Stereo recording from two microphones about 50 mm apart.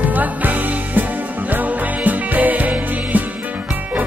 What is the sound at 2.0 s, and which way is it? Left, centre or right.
Music, right.